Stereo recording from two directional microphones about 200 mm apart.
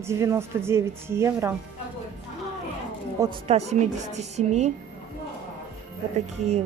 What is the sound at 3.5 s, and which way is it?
A woman's voice, 35° right (ahead or behind).